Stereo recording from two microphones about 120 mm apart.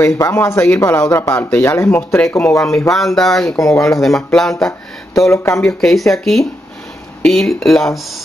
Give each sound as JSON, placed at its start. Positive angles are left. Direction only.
{"t": 0.0, "sound": "speech", "side_deg": 20}
{"t": 2.9, "sound": "speech", "side_deg": 0}
{"t": 3.5, "sound": "speech", "side_deg": 25}
{"t": 4.0, "sound": "speech", "side_deg": 5}
{"t": 5.3, "sound": "speech", "side_deg": 20}
{"t": 5.7, "sound": "speech", "side_deg": 0}